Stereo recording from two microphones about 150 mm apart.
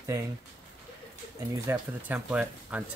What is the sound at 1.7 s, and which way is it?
Speech, 15° right (ahead or behind).